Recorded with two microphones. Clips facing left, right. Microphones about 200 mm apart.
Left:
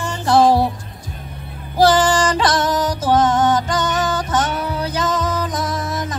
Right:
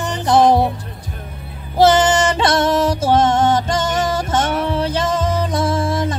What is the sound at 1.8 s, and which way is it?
Music, 25° right (ahead or behind).